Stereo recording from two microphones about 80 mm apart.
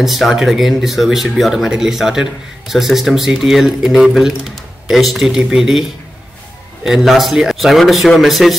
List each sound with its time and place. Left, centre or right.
0.0 s speech: centre